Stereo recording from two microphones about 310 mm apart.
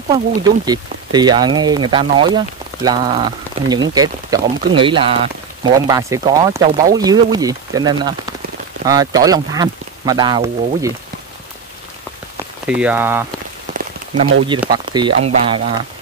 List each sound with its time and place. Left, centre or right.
0.1 s speech: centre
12.6 s speech: centre
14.6 s speech: centre